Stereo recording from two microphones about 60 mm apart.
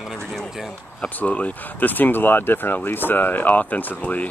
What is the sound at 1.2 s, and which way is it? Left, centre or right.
Speech, left.